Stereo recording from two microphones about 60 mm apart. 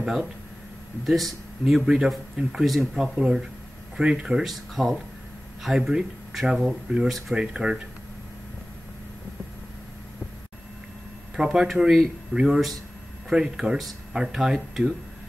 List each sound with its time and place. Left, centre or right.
0.0 s speech: centre
4.5 s speech: centre
11.3 s speech: centre
12.3 s speech: centre
13.3 s speech: centre